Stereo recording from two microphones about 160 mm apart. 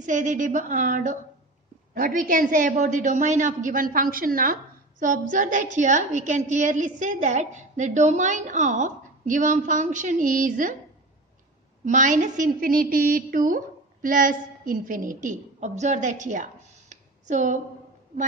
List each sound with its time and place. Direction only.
0.0 s a woman's voice: 50° right (ahead or behind)
11.8 s a woman's voice: 50° right (ahead or behind)
16.9 s a sound: 50° right (ahead or behind)